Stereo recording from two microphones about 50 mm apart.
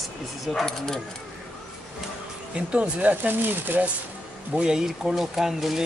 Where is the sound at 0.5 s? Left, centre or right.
Centre.